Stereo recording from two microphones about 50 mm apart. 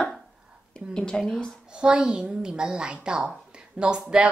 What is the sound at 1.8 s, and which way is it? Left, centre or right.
A child's voice, centre.